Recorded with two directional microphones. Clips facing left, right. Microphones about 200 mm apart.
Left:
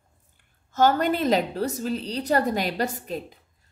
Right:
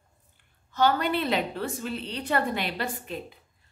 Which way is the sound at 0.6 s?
45° left (ahead or behind).